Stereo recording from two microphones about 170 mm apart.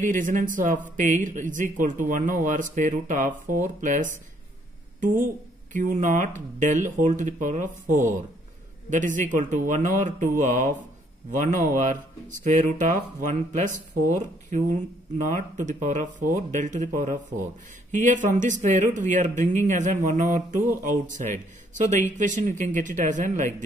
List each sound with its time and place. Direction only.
0.0 s speech: 50° right (ahead or behind)